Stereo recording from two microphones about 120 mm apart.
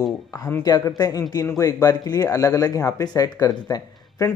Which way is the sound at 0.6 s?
30° left (ahead or behind).